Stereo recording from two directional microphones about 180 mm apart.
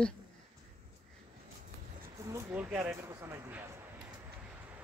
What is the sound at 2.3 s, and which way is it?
Speech, 10° right (ahead or behind).